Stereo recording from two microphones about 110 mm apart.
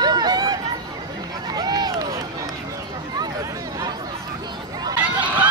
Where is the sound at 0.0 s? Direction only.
40° right (ahead or behind).